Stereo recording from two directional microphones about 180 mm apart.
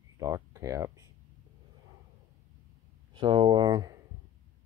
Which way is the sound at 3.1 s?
25° right (ahead or behind).